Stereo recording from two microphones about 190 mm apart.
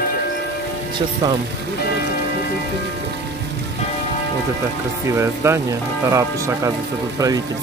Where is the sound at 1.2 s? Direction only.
20° right (ahead or behind).